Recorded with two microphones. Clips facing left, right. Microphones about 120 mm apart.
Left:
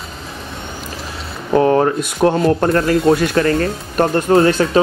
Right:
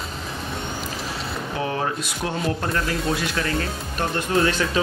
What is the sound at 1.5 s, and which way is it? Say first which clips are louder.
Speech: left 14 dB; 50° left (ahead or behind).